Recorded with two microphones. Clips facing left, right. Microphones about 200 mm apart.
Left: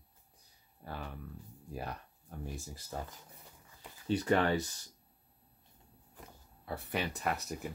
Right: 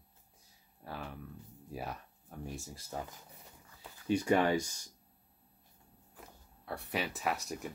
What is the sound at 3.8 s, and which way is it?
Speech, 10° right (ahead or behind).